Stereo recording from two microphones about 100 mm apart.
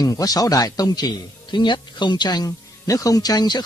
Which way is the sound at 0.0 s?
40° left (ahead or behind).